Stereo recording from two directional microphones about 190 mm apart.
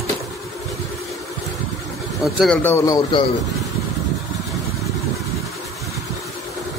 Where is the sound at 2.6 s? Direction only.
15° left (ahead or behind).